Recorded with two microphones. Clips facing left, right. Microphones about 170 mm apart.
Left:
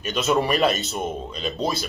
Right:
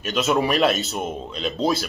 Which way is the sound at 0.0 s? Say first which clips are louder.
Right 1 dB; centre (ahead or behind).